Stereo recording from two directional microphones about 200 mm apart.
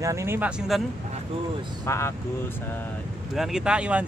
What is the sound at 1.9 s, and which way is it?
Speech, 15° left (ahead or behind).